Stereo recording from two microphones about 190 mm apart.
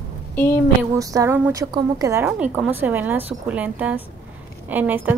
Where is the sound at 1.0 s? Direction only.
20° right (ahead or behind).